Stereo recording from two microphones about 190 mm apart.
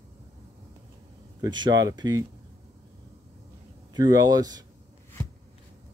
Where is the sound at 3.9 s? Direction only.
20° right (ahead or behind).